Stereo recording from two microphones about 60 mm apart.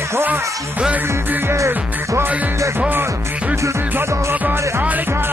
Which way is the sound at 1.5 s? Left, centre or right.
Right.